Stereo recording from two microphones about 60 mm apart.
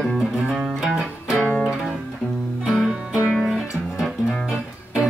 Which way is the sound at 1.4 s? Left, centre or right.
Centre.